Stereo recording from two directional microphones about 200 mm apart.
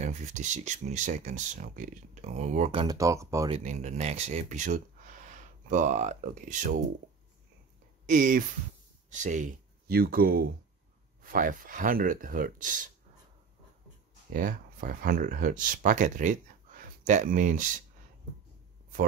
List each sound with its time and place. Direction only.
0.0 s speech: 35° right (ahead or behind)
3.0 s speech: 15° right (ahead or behind)
3.4 s speech: 30° right (ahead or behind)
8.1 s speech: 40° right (ahead or behind)
14.3 s speech: 45° right (ahead or behind)